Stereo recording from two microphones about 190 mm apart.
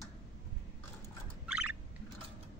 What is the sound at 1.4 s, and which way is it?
Turkey, 5° right (ahead or behind).